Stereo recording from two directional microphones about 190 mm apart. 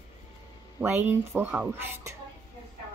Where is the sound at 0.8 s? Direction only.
10° right (ahead or behind).